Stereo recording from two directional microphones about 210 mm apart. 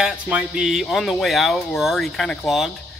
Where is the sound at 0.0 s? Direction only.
5° right (ahead or behind).